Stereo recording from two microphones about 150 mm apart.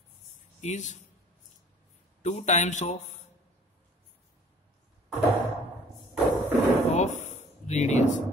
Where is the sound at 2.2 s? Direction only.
50° left (ahead or behind).